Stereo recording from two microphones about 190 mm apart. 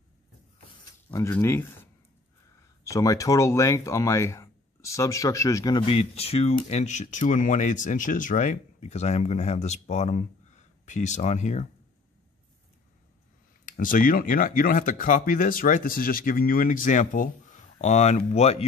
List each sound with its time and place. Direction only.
1.1 s speech: 15° left (ahead or behind); by 11.6 s 35° left (ahead or behind)
13.7 s speech: 45° left (ahead or behind)